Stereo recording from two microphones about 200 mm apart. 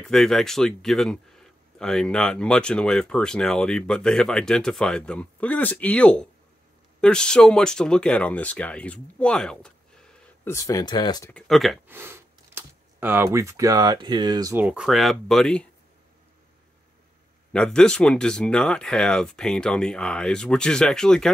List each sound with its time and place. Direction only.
0.1 s speech: centre (ahead or behind)
10.5 s speech: 15° left (ahead or behind)
11.2 s speech: 5° left (ahead or behind)
11.9 s speech: 10° right (ahead or behind)
17.5 s speech: 5° left (ahead or behind)